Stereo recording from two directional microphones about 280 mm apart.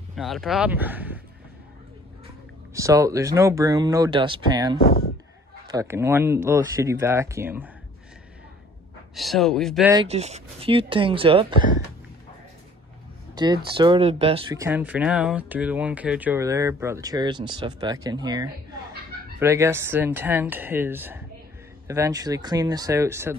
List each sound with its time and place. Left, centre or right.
0.1 s speech: centre
2.7 s speech: centre
4.8 s speech: left
5.7 s speech: centre
9.1 s speech: centre
9.9 s speech: right
13.3 s a sound: centre
13.7 s speech: centre